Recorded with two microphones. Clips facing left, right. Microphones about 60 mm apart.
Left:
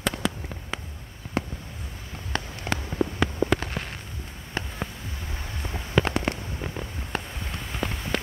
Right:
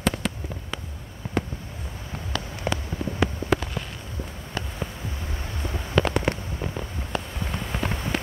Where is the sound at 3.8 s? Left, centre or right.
Left.